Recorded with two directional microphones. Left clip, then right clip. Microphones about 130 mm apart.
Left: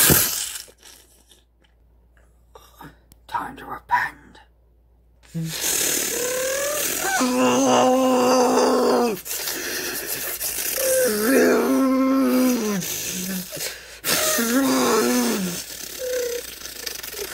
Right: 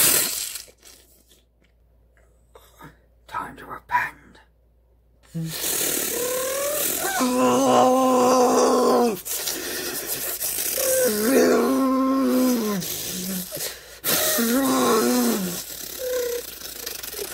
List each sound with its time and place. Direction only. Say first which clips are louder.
0.2 s a sound: left 2 dB; 5° left (ahead or behind)
2.5 s whispering: left 3 dB; 10° left (ahead or behind)
5.3 s jackhammer: left 3 dB; 5° right (ahead or behind)